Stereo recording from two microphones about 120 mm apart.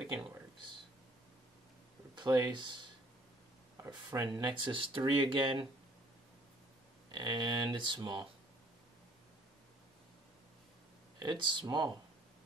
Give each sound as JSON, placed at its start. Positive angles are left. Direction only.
{"t": 2.1, "sound": "speech", "side_deg": -35}
{"t": 3.9, "sound": "speech", "side_deg": -35}
{"t": 7.1, "sound": "speech", "side_deg": -40}
{"t": 11.1, "sound": "speech", "side_deg": -40}